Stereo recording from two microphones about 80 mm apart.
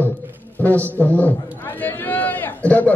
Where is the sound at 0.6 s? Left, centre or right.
Left.